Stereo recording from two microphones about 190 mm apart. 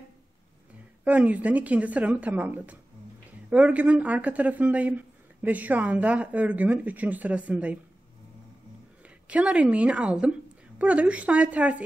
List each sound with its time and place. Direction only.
1.0 s speech: 10° right (ahead or behind)
9.3 s speech: 5° right (ahead or behind)